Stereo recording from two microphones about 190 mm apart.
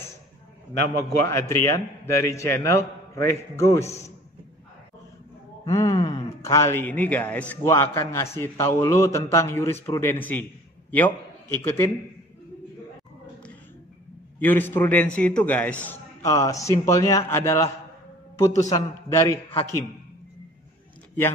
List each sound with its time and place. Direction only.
0.8 s a man's voice: 15° left (ahead or behind)
5.7 s a man's voice: 20° left (ahead or behind)
14.4 s a man's voice: 10° left (ahead or behind)